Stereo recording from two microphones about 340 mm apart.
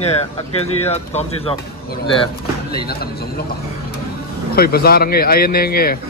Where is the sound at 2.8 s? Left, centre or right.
Left.